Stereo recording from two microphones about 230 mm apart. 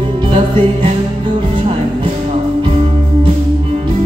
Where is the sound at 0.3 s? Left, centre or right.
Right.